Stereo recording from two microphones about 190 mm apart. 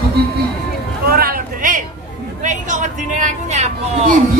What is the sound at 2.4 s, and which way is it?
Speech, 40° right (ahead or behind).